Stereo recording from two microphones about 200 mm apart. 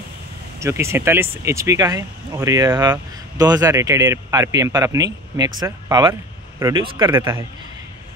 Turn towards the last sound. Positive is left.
turn(degrees=-10)  # may be behind; listen again after turning